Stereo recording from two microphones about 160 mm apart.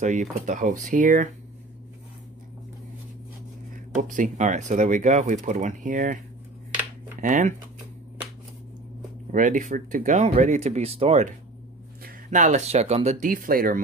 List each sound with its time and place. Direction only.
0.0 s speech: 50° right (ahead or behind)
3.7 s speech: 55° right (ahead or behind)
9.3 s speech: 55° right (ahead or behind)